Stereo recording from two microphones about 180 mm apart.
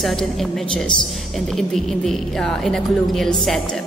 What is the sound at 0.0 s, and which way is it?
Music, centre (ahead or behind).